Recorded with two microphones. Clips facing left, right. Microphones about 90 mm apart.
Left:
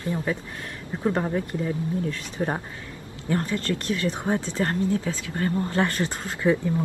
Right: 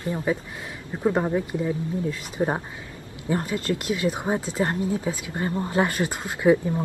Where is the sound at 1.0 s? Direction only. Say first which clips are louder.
Right 2 dB; 10° right (ahead or behind).